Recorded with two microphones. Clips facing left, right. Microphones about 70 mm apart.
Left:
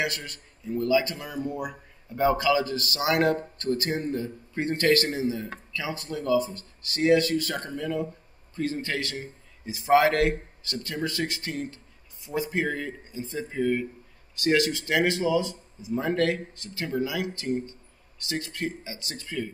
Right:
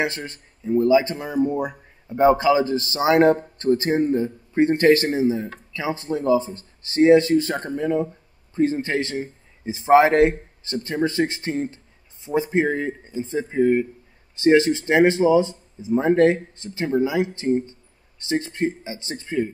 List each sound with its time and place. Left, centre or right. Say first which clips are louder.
0.0 s speech: right 5 dB; right